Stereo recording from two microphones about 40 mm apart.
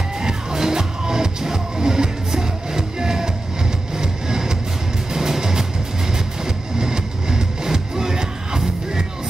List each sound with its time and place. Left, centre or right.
0.2 s music: centre
6.8 s music: centre